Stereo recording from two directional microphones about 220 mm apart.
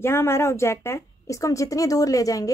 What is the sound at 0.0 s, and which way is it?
A woman's voice, 10° left (ahead or behind).